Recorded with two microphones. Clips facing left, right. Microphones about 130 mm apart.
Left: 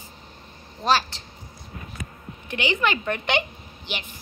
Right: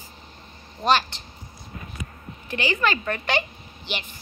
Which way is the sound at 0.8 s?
5° left (ahead or behind).